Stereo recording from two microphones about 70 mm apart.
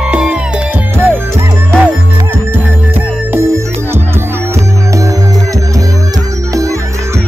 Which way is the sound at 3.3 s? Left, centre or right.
Right.